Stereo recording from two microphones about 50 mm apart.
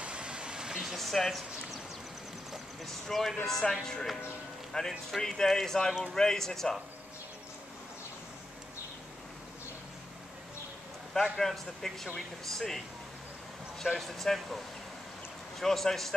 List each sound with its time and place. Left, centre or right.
0.0 s vehicle: right
0.9 s a man's voice: centre
11.1 s a man's voice: centre
13.9 s a man's voice: centre
15.6 s speech: centre